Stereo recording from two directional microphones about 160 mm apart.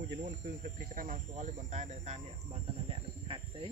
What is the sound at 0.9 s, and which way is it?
Speech, 55° right (ahead or behind).